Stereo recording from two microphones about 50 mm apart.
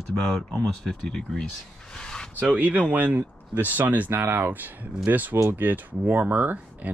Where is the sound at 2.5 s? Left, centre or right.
Right.